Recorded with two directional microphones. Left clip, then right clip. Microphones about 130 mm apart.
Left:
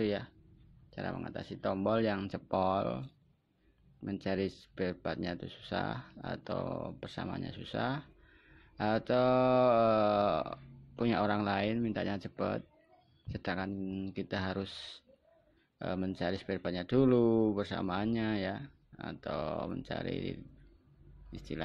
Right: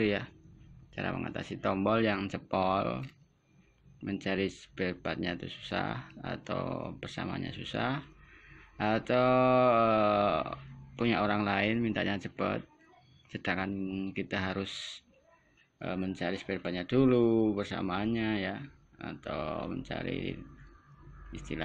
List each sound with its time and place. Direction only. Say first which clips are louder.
0.0 s speech: right 3 dB; 15° left (ahead or behind)